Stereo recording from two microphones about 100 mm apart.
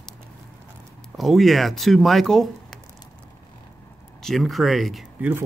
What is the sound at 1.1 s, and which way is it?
Speech, centre (ahead or behind).